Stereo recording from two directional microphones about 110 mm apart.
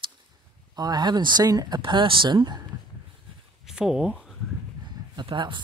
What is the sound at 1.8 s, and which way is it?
Speech, 50° right (ahead or behind).